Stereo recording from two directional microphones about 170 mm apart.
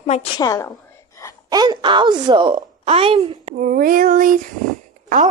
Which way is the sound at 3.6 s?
55° right (ahead or behind).